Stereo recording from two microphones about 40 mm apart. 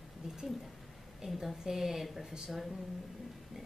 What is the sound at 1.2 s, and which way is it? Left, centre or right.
A woman's voice, centre.